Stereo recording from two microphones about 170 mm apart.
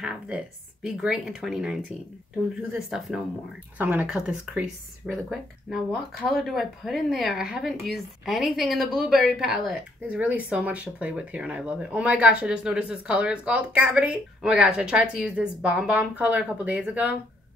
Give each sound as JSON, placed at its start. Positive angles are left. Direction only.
{"t": 0.0, "sound": "speech", "side_deg": -5}